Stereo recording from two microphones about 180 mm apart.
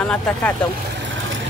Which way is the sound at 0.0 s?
5° left (ahead or behind).